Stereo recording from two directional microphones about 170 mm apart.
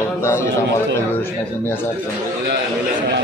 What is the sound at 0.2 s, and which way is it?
Speech, 15° left (ahead or behind).